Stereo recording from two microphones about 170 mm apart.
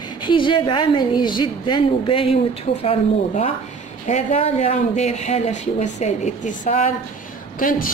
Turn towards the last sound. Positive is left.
turn(degrees=55)  # may be behind; listen again after turning